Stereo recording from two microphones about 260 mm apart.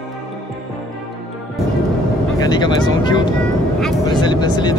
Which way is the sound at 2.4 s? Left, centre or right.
Centre.